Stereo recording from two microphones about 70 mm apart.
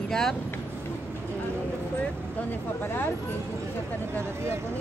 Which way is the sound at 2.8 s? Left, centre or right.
Left.